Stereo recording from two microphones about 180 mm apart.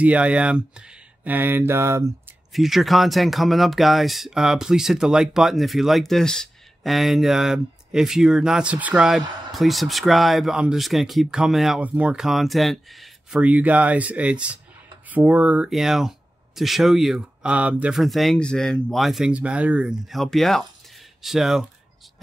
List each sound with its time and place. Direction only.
0.0 s speech: 5° right (ahead or behind)
2.5 s speech: centre (ahead or behind)